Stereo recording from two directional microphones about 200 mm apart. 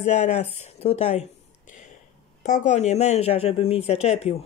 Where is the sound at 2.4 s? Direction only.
40° left (ahead or behind).